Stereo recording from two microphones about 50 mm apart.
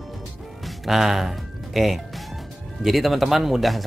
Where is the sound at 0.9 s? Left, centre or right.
Centre.